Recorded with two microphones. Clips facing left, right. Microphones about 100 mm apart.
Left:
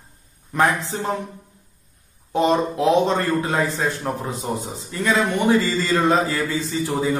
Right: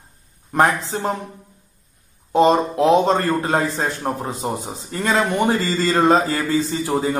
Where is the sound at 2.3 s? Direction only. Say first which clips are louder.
Right 4 dB; 30° right (ahead or behind).